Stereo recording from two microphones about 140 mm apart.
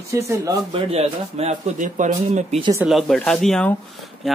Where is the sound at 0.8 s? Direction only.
50° right (ahead or behind).